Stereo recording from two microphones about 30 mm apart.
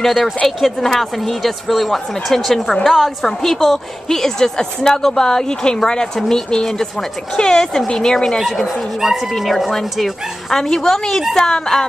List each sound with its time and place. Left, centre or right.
0.0 s a woman's voice: centre
2.3 s a woman's voice: centre
2.8 s a woman's voice: centre; by 8.4 s left
8.4 s speech: centre
10.5 s a woman's voice: centre